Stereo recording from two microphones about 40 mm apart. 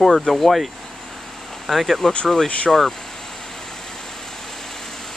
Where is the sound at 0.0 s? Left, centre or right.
Centre.